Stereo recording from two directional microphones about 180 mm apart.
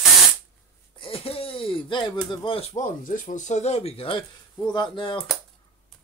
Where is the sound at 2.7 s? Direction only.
45° left (ahead or behind); by 5.2 s 25° left (ahead or behind).